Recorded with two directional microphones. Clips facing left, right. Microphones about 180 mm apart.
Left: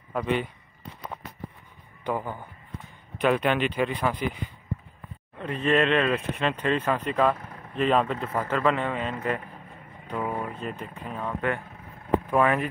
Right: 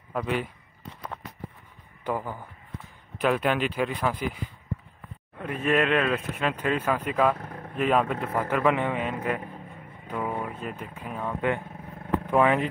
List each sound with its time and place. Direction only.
0.1 s speech: centre (ahead or behind)
2.0 s speech: 5° right (ahead or behind)
5.4 s speech: 10° right (ahead or behind)
10.1 s speech: 5° left (ahead or behind)
10.4 s speech: 5° right (ahead or behind)